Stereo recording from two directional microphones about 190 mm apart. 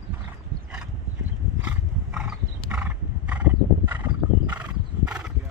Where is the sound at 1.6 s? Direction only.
5° right (ahead or behind).